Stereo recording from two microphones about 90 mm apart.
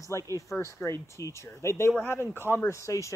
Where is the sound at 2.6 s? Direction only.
35° left (ahead or behind).